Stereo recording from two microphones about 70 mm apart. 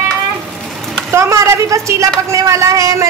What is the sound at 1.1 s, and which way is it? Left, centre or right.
A woman's voice, right.